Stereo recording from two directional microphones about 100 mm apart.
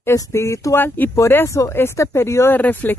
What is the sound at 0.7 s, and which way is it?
Speech, 20° left (ahead or behind).